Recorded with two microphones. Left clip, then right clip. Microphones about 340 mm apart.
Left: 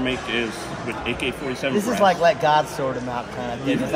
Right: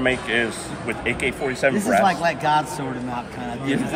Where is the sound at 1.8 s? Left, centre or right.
Centre.